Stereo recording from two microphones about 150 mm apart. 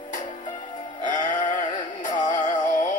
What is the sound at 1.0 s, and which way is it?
Music, 60° left (ahead or behind).